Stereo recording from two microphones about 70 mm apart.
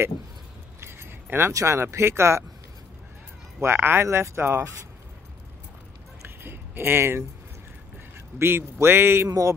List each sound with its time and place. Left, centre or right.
0.7 s keys jangling: right
1.2 s a sound: right
1.5 s speech: right
3.6 s speech: right
6.2 s a sound: right
8.4 s speech: right